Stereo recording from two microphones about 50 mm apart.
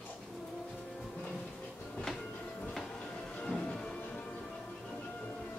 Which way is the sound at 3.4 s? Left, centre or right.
Left.